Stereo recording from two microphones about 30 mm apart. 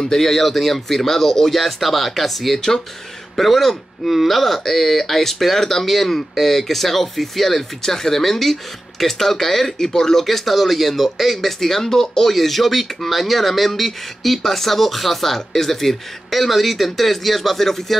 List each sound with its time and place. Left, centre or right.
0.2 s speech: centre
9.9 s speech: centre
10.2 s speech: centre